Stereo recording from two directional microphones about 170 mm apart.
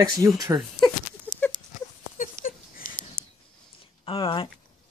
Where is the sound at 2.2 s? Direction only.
55° left (ahead or behind).